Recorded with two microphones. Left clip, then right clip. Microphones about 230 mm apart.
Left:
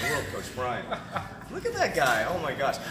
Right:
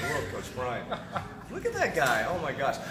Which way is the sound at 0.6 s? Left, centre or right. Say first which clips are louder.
Left 2 dB; right.